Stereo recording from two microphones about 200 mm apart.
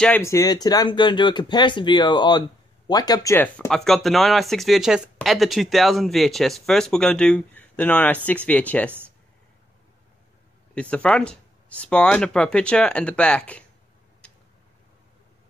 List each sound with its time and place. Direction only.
0.0 s speech: 10° left (ahead or behind)
10.7 s speech: 5° left (ahead or behind)